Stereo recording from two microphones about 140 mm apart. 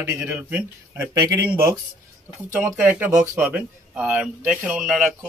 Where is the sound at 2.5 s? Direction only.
10° right (ahead or behind).